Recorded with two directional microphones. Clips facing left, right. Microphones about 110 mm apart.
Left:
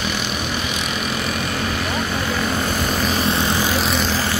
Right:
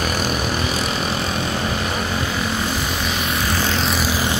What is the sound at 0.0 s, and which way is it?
Vehicle, 40° right (ahead or behind).